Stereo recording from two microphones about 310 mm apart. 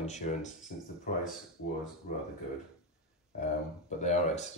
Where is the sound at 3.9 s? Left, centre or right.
Left.